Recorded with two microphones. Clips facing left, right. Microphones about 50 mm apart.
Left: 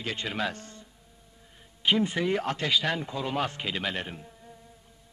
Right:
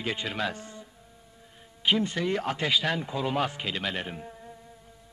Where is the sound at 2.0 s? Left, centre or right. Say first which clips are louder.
Left 1 dB; centre.